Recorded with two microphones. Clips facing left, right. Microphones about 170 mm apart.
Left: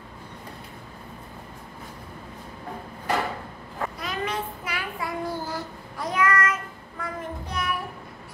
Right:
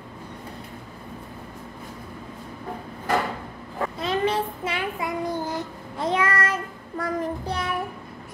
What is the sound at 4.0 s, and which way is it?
Child singing, 30° right (ahead or behind).